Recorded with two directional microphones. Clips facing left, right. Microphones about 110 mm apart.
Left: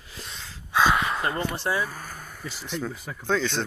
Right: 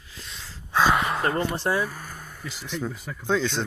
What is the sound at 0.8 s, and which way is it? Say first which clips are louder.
Gasp: right 1 dB; 15° right (ahead or behind).